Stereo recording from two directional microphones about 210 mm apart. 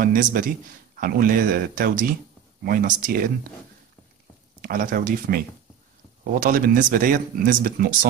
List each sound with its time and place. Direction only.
0.0 s a man's voice: 40° right (ahead or behind)
4.6 s a man's voice: 40° right (ahead or behind)
6.4 s a man's voice: 40° right (ahead or behind)